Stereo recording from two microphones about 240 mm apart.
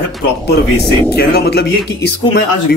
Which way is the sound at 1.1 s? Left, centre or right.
Left.